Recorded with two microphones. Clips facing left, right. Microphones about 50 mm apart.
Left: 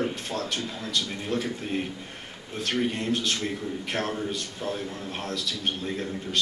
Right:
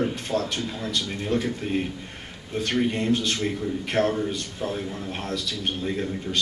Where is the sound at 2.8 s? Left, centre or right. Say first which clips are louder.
Right 3 dB; centre.